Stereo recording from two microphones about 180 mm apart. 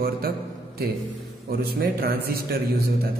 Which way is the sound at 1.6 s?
55° right (ahead or behind).